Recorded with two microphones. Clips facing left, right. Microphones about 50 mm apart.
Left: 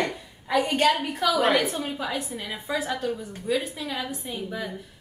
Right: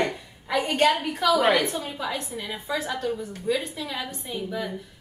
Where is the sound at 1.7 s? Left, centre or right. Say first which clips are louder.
Left 1 dB; centre.